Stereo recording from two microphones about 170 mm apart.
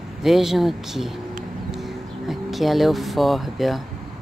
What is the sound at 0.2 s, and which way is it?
Speech, centre (ahead or behind).